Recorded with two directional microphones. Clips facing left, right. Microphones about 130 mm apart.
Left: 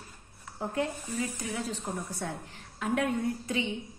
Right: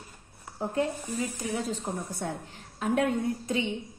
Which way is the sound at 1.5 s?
25° right (ahead or behind).